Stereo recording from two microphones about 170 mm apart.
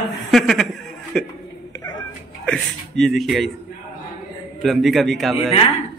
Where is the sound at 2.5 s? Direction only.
5° left (ahead or behind).